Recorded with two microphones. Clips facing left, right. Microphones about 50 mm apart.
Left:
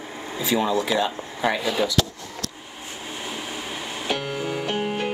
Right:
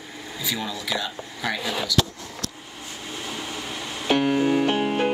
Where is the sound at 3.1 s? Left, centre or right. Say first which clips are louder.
Even; centre.